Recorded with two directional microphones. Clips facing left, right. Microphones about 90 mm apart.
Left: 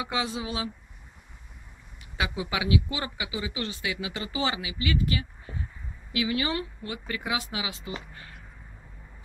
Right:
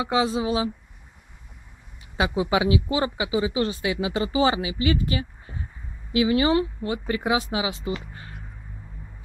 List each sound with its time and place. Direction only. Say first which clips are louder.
0.0 s speech: right 8 dB; 30° right (ahead or behind)
2.1 s speech: right 8 dB; 25° right (ahead or behind)